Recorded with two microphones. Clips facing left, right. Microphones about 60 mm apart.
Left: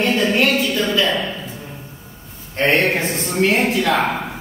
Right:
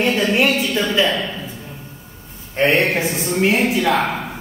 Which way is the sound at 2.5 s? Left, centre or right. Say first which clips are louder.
Even; centre.